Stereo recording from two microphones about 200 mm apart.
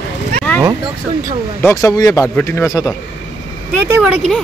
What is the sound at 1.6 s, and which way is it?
Speech, 15° left (ahead or behind).